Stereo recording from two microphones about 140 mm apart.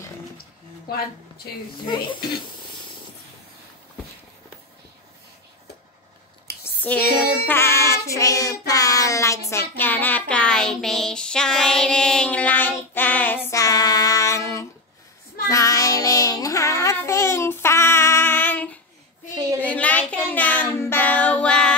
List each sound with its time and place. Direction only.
1.9 s speech: 35° left (ahead or behind)
6.6 s a sound: 10° left (ahead or behind)
7.4 s child singing: 15° left (ahead or behind)
13.5 s child singing: 25° left (ahead or behind); by 21.7 s 5° left (ahead or behind)